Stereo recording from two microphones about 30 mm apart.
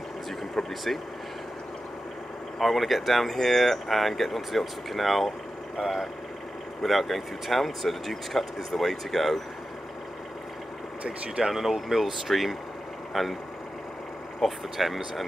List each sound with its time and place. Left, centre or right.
0.6 s speech: centre
2.6 s speech: centre
3.3 s speech: centre
6.8 s speech: centre
11.1 s speech: right
11.5 s speech: centre
14.4 s speech: centre